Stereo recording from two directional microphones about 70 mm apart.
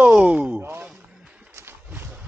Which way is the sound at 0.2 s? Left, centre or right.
Centre.